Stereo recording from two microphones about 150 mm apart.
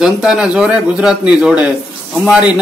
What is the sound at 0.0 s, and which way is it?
Speech, 5° right (ahead or behind).